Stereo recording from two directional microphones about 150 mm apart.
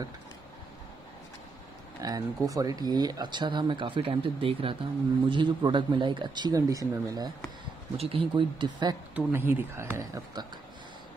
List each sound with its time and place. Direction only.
2.0 s speech: 25° right (ahead or behind)
8.0 s speech: 35° right (ahead or behind)
9.1 s speech: 15° right (ahead or behind)